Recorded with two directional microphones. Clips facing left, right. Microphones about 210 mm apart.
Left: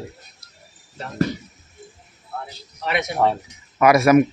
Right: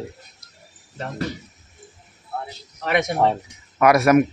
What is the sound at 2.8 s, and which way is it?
Speech, 50° right (ahead or behind).